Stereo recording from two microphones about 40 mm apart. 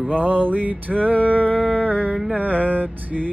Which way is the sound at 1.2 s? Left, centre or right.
Left.